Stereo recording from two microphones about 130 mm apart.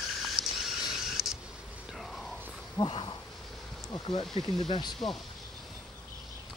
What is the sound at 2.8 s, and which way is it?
Speech, 35° left (ahead or behind).